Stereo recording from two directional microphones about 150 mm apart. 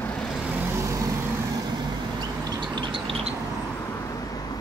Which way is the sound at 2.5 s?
30° right (ahead or behind).